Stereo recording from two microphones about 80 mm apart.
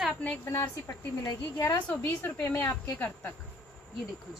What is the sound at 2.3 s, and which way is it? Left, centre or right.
Speech, centre.